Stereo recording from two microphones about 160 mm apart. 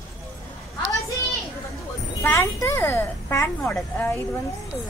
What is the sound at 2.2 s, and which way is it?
A child's voice, 15° left (ahead or behind).